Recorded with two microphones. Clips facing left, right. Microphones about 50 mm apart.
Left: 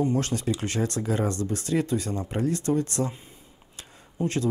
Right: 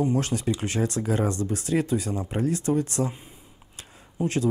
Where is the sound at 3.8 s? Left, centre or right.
Centre.